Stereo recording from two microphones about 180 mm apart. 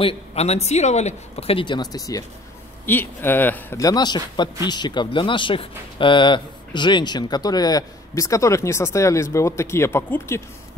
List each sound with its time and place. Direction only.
0.0 s speech: 35° left (ahead or behind); by 10.4 s 15° left (ahead or behind)